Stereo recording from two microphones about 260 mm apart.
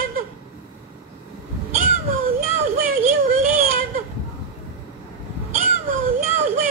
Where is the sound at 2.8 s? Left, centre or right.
Right.